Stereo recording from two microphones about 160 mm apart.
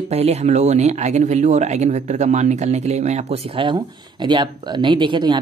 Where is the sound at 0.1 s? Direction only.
40° right (ahead or behind).